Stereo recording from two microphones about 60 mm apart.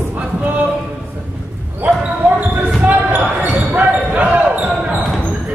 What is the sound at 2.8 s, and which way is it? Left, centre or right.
Basketball bounce, right.